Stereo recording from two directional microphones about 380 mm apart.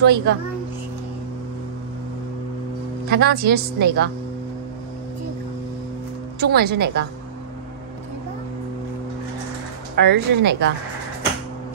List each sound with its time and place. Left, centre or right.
0.0 s a woman's voice: right
3.1 s a woman's voice: right
6.4 s a woman's voice: right
9.9 s a woman's voice: right